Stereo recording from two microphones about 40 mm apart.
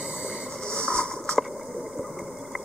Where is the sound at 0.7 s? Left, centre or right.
Centre.